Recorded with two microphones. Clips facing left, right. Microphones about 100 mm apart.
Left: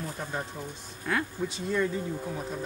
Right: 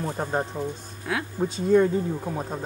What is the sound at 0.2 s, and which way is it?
Speech, 45° right (ahead or behind).